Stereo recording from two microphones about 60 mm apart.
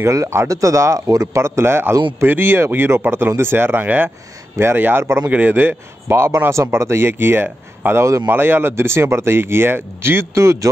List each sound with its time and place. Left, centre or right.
0.0 s speech: right
1.4 s a man's voice: right
6.0 s speech: right